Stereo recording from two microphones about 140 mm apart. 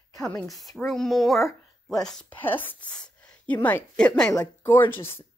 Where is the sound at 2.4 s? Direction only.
15° left (ahead or behind).